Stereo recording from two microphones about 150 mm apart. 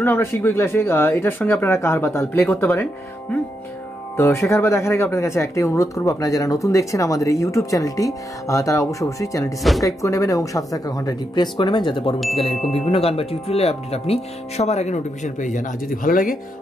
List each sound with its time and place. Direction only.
0.0 s speech: 15° left (ahead or behind)
9.6 s speech: centre (ahead or behind)
9.8 s speech: 20° left (ahead or behind); by 16.3 s 65° left (ahead or behind)